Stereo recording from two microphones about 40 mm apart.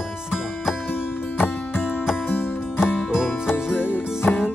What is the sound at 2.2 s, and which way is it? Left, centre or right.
Music, left.